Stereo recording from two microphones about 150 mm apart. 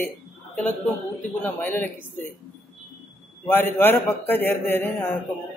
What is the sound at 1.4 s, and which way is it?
Speech, 10° left (ahead or behind).